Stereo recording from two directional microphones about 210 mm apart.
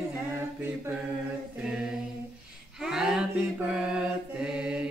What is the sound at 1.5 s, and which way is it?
Mantra, 5° right (ahead or behind).